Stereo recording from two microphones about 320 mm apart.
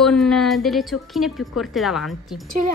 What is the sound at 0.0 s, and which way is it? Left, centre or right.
Speech, centre.